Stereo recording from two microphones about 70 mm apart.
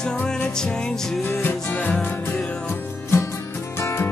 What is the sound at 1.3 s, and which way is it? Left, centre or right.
Music, left.